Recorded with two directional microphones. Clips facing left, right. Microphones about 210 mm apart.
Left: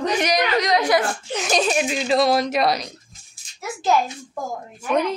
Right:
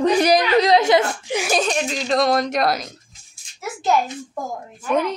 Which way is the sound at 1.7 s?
5° left (ahead or behind).